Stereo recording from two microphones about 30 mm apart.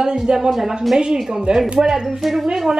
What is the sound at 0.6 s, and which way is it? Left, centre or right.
Speech, centre.